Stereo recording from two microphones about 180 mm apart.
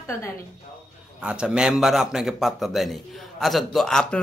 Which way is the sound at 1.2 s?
5° right (ahead or behind).